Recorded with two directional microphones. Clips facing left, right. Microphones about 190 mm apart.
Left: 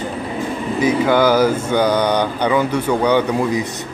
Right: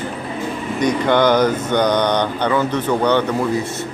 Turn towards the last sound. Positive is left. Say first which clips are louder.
# left 1 dB
turn(degrees=15)  # may be behind; listen again after turning